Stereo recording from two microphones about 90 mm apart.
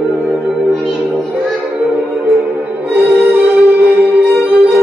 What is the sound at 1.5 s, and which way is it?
Music, 15° right (ahead or behind).